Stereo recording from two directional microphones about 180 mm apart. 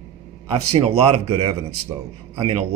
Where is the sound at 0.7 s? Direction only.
35° right (ahead or behind).